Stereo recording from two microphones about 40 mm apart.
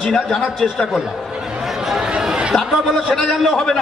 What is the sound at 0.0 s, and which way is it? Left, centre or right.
Speech, centre.